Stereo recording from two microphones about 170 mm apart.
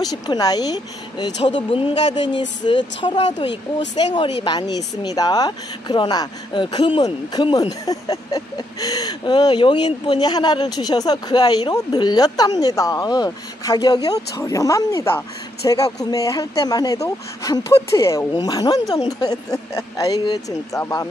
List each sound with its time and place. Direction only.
0.0 s speech: 25° left (ahead or behind)